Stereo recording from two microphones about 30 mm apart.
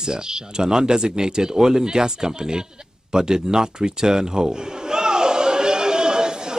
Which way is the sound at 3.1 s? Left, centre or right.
Right.